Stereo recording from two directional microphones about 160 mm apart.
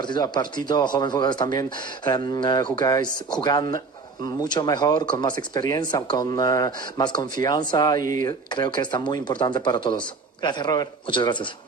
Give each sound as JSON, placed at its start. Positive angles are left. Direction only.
{"t": 0.0, "sound": "speech", "side_deg": 30}